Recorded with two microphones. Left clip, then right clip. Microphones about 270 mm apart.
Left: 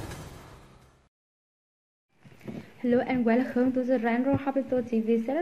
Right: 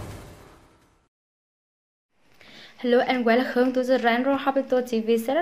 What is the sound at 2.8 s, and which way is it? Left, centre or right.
Speech, centre.